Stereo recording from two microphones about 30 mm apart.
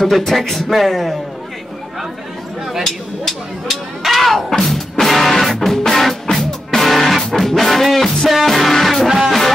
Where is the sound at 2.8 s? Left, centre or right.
Centre.